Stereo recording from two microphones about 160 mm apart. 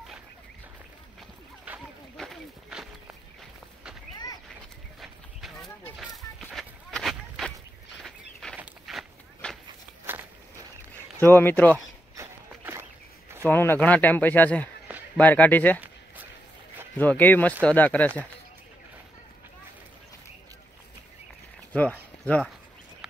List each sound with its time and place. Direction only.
1.7 s a sound: 10° right (ahead or behind)
5.0 s livestock: centre (ahead or behind)
5.9 s a sound: centre (ahead or behind)
8.5 s walk: centre (ahead or behind)
10.1 s walk: 15° right (ahead or behind)
11.1 s speech: 10° left (ahead or behind)
12.2 s a sound: 15° right (ahead or behind)
13.5 s speech: 15° left (ahead or behind)
16.9 s speech: 10° left (ahead or behind)
21.7 s speech: 10° left (ahead or behind)